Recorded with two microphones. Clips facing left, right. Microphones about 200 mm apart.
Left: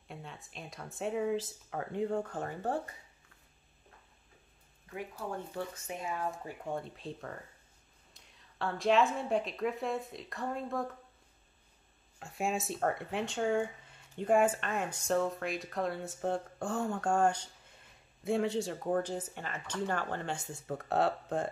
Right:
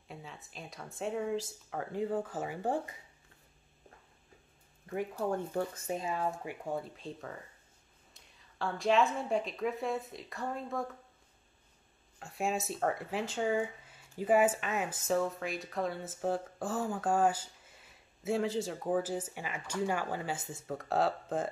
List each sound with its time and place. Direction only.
0.1 s speech: centre (ahead or behind)
5.9 s speech: 35° right (ahead or behind)
6.4 s speech: 5° right (ahead or behind)
12.2 s speech: centre (ahead or behind)